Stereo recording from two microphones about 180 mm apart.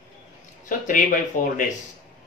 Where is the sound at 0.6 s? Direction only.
45° left (ahead or behind).